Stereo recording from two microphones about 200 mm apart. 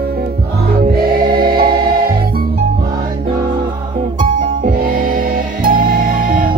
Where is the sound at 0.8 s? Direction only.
50° right (ahead or behind).